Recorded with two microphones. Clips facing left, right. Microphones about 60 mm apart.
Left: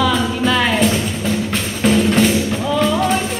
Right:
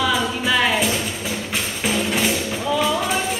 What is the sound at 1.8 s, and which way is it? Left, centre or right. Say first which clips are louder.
Music: left 8 dB; centre.